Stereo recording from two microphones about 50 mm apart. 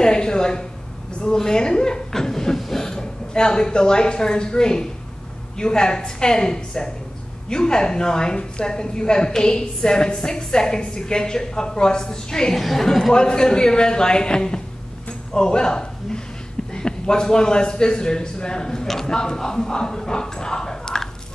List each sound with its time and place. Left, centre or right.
0.0 s a sound: centre
1.2 s a woman's voice: centre
12.5 s a woman's voice: centre